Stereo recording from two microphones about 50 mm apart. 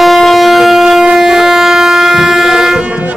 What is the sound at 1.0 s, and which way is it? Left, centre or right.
Train, centre.